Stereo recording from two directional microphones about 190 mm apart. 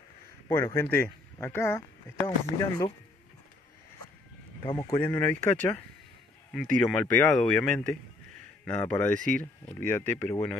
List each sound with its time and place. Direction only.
0.5 s speech: 15° left (ahead or behind)
4.6 s speech: 20° left (ahead or behind)